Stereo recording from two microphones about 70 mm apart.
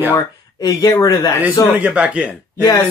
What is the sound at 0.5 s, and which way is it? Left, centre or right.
Speech, left.